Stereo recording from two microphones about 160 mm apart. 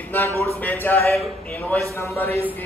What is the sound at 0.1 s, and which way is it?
A man's voice, 15° left (ahead or behind).